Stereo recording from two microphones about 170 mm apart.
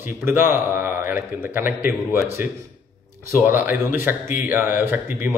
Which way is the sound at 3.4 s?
10° right (ahead or behind).